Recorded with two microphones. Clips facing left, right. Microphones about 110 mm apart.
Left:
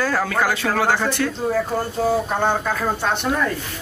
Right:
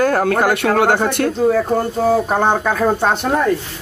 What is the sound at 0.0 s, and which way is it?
Speech, 55° right (ahead or behind).